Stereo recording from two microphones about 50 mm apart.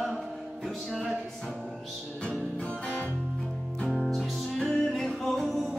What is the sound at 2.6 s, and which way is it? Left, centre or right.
Music, left.